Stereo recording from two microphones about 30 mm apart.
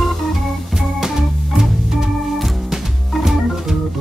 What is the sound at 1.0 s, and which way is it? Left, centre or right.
Organ, centre.